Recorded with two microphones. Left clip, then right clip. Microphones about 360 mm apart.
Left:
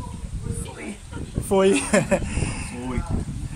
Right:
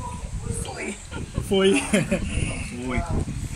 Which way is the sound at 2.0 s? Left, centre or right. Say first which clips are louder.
Left 4 dB; left.